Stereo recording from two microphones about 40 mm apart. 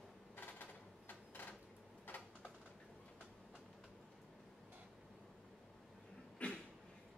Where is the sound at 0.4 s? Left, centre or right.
Left.